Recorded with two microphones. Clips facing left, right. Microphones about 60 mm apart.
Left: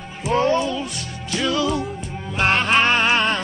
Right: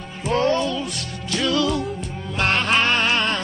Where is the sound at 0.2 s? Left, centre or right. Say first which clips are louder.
Left 1 dB; centre.